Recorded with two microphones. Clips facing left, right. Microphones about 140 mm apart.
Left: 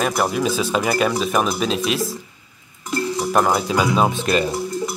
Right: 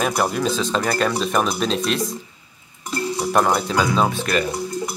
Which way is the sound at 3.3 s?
5° left (ahead or behind).